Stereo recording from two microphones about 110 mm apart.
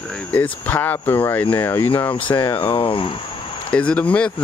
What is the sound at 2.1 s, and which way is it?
Speech, 50° left (ahead or behind).